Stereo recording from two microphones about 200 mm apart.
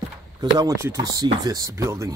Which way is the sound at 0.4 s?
20° right (ahead or behind).